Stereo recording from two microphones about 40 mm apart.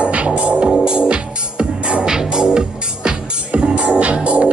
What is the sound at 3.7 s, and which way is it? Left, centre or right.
Music, right.